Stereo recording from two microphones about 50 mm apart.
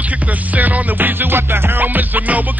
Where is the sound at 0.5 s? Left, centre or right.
Right.